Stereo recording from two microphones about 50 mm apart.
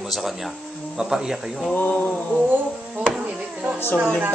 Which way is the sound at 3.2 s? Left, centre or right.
Right.